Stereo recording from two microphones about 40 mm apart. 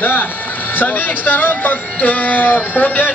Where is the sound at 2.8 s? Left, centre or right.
Left.